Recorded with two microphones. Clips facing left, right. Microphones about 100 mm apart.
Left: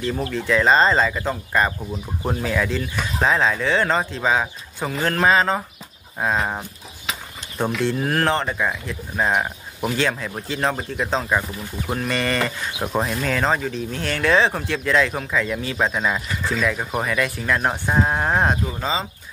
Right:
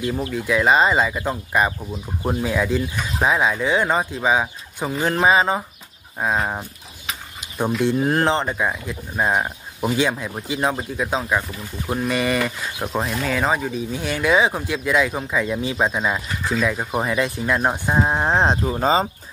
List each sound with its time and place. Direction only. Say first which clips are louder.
0.3 s speech: even; 10° right (ahead or behind)
6.1 s speech: even; 5° right (ahead or behind)
7.3 s a sound: right 1 dB; 10° right (ahead or behind)
7.8 s speech: right 3 dB; 20° right (ahead or behind)
12.7 s speech: left 2 dB; 5° left (ahead or behind); by 19.0 s 40° right (ahead or behind)